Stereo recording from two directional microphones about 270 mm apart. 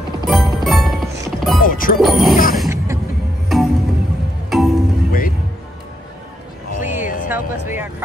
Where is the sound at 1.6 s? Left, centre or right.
Left.